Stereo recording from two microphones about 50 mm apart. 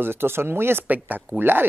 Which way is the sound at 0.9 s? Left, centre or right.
Right.